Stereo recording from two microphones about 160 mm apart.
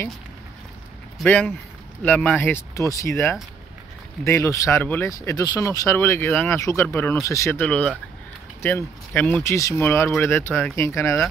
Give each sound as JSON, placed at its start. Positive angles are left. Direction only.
{"t": 1.2, "sound": "speech", "side_deg": 10}